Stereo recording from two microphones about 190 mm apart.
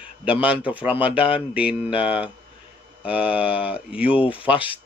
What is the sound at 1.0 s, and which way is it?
Speech, 30° left (ahead or behind).